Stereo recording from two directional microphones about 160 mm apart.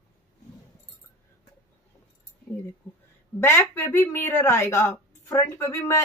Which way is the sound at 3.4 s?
15° left (ahead or behind).